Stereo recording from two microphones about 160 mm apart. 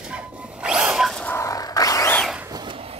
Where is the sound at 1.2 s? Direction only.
15° left (ahead or behind).